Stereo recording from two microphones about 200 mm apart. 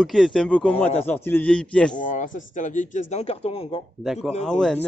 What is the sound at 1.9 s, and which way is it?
Speech, 40° left (ahead or behind).